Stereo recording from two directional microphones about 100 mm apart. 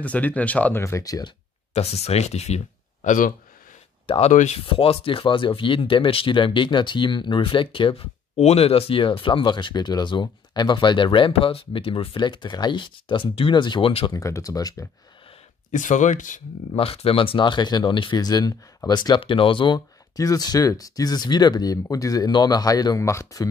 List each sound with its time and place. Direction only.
0.0 s speech: 15° left (ahead or behind)
0.7 s speech: 30° left (ahead or behind)
1.8 s speech: 90° left
4.1 s speech: 75° left (ahead or behind)
14.1 s speech: 30° left (ahead or behind)
16.7 s speech: 75° left (ahead or behind); by 18.2 s 55° left (ahead or behind)
18.2 s speech: 40° left (ahead or behind)
20.2 s speech: 40° left (ahead or behind)